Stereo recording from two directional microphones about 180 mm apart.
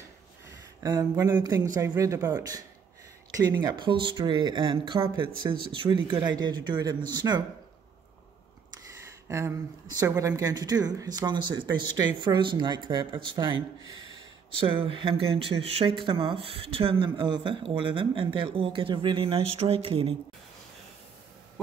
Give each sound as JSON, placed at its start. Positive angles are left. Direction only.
{"t": 0.8, "sound": "speech", "side_deg": -20}
{"t": 9.3, "sound": "speech", "side_deg": -15}
{"t": 14.8, "sound": "speech", "side_deg": -30}